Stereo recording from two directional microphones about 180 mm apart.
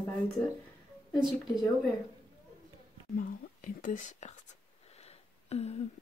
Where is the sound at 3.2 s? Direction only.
50° left (ahead or behind).